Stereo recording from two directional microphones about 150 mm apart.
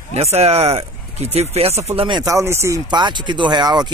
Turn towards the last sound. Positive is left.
turn(degrees=-30)  # may be behind; listen again after turning